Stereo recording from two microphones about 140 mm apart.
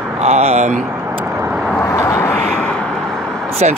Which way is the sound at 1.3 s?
15° right (ahead or behind).